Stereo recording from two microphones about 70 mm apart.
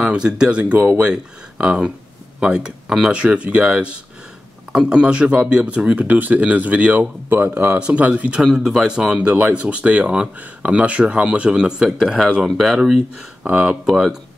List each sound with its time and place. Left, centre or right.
0.0 s speech: centre
0.7 s speech: right
1.0 s speech: centre
8.4 s speech: centre
12.4 s speech: centre
13.5 s speech: centre
13.8 s speech: centre